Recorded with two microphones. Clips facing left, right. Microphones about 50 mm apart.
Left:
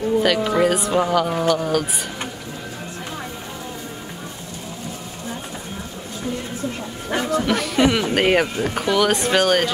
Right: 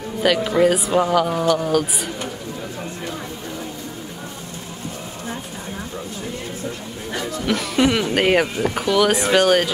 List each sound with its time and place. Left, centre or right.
0.2 s speech: centre
7.1 s a sound: left
7.4 s speech: centre